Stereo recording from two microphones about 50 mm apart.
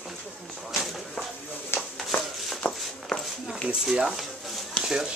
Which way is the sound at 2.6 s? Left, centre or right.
Left.